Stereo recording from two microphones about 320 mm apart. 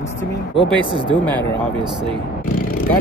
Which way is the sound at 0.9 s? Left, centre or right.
Centre.